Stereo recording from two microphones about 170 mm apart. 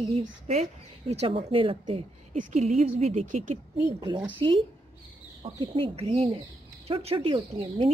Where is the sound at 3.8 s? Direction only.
25° right (ahead or behind).